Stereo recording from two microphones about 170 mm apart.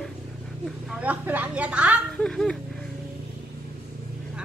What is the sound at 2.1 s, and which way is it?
Speech, 5° left (ahead or behind).